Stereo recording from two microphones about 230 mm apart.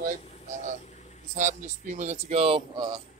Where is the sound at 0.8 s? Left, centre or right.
Left.